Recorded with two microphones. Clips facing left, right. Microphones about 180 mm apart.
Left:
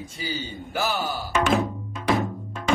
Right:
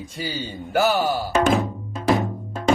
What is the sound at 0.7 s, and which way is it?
Speech, 50° right (ahead or behind).